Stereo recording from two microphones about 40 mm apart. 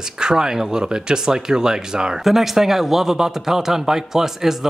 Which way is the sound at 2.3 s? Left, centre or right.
Centre.